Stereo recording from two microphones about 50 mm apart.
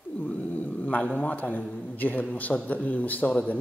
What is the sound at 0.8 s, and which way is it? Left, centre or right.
A man's voice, left.